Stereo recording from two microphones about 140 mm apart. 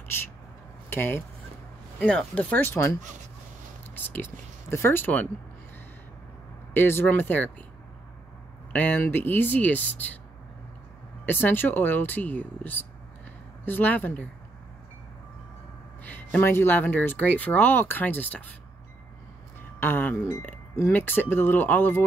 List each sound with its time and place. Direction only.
0.1 s speech: 15° left (ahead or behind)
6.7 s speech: 15° left (ahead or behind)
8.7 s speech: 10° left (ahead or behind)
11.2 s speech: 15° left (ahead or behind)
16.0 s speech: 10° left (ahead or behind)
19.8 s speech: 15° left (ahead or behind)